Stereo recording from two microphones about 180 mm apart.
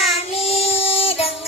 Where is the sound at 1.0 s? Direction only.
35° left (ahead or behind).